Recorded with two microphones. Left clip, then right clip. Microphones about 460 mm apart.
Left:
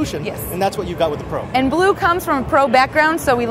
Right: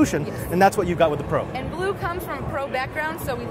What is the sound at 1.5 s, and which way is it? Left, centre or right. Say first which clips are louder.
Speech: left 11 dB; left.